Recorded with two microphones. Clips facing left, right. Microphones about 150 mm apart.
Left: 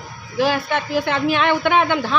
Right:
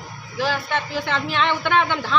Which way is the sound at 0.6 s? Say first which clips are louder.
Left 4 dB; 55° left (ahead or behind).